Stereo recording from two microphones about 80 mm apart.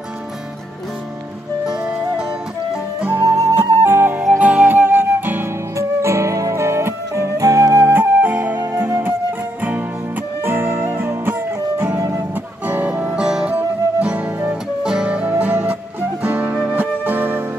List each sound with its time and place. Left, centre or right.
2.7 s music: centre
3.5 s flute: right
4.4 s music: right
5.8 s music: right
7.8 s flute: right
9.6 s music: right